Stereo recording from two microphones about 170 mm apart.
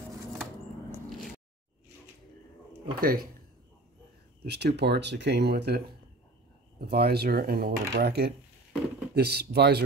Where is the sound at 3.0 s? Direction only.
60° right (ahead or behind).